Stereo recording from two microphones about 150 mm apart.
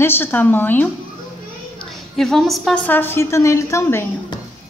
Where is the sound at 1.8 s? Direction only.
Centre (ahead or behind).